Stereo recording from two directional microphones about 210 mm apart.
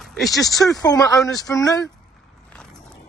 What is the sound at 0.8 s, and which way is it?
Speech, 20° left (ahead or behind).